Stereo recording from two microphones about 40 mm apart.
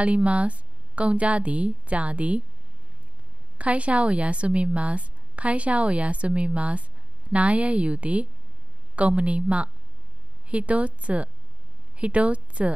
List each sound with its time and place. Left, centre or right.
0.0 s a woman's voice: right
3.5 s a woman's voice: right